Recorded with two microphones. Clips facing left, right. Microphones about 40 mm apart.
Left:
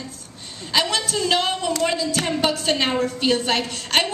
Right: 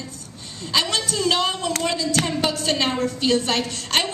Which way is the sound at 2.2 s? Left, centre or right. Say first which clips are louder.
Left 1 dB; left.